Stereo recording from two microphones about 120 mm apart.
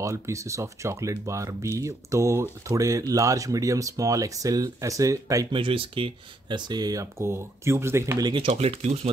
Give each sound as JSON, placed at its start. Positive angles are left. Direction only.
{"t": 0.0, "sound": "speech", "side_deg": -25}
{"t": 5.5, "sound": "speech", "side_deg": -45}
{"t": 8.2, "sound": "speech", "side_deg": -40}
{"t": 8.5, "sound": "speech", "side_deg": -60}